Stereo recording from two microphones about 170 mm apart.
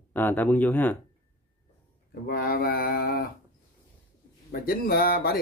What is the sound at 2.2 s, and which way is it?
Speech, 60° left (ahead or behind).